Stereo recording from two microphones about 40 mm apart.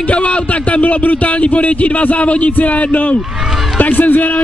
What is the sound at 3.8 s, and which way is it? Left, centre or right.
Speech, left.